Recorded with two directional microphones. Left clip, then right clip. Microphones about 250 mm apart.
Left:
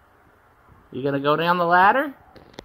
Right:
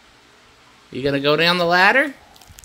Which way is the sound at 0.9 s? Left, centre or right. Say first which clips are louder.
Right 3 dB; centre.